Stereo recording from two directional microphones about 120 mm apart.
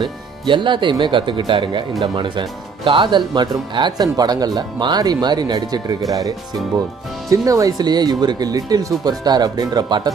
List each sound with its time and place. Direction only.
0.5 s speech: 40° right (ahead or behind)
7.2 s speech: 25° right (ahead or behind)